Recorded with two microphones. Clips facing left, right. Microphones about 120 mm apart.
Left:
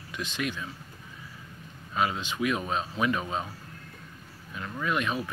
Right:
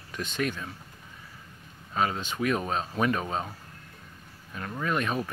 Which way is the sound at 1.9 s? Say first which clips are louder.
Even; 40° right (ahead or behind).